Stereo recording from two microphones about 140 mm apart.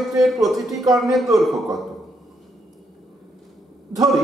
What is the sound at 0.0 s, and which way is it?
Speech, centre (ahead or behind).